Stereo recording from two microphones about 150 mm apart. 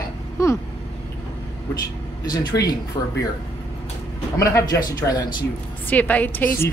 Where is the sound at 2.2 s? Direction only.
25° left (ahead or behind).